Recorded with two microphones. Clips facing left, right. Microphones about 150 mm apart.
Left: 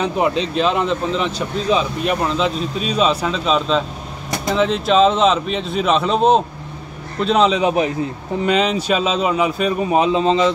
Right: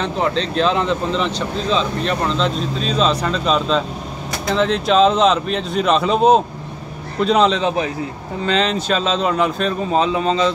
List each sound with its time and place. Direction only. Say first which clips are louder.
0.0 s speech: left 2 dB; 10° left (ahead or behind)
7.6 s a man's voice: left 3 dB; 20° left (ahead or behind)